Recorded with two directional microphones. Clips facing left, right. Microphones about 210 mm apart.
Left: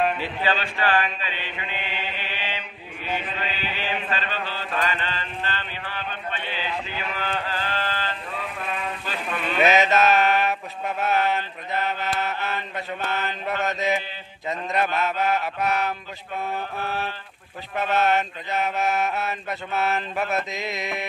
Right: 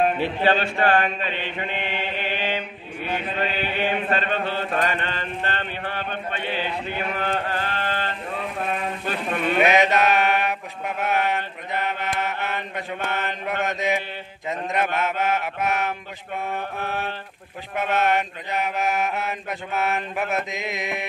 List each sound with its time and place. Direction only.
0.0 s mantra: 50° right (ahead or behind)
9.0 s sheep: 55° right (ahead or behind)
9.6 s mantra: 15° right (ahead or behind)